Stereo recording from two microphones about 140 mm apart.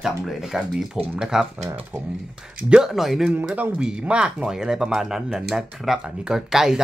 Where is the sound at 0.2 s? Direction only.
Centre (ahead or behind).